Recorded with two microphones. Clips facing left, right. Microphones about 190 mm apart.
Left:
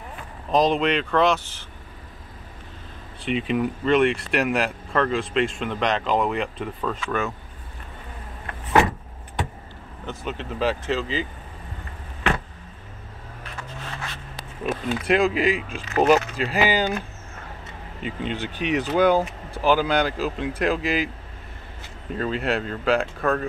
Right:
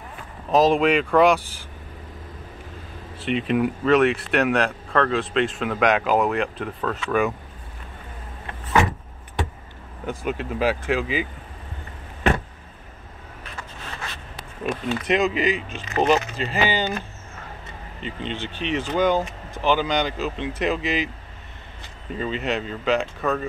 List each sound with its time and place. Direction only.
0.5 s speech: 5° right (ahead or behind)
3.2 s speech: centre (ahead or behind)
7.1 s speech: 10° right (ahead or behind)
10.0 s speech: 10° right (ahead or behind)
14.6 s speech: 5° left (ahead or behind)
18.0 s speech: 10° left (ahead or behind)
22.1 s speech: centre (ahead or behind)